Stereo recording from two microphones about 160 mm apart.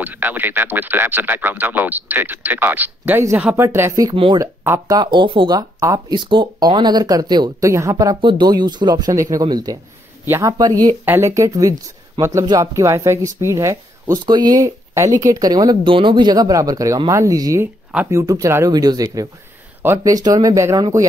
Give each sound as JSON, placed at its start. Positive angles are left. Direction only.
{"t": 0.0, "sound": "speech", "side_deg": -10}
{"t": 4.1, "sound": "speech", "side_deg": -30}
{"t": 4.6, "sound": "speech", "side_deg": -20}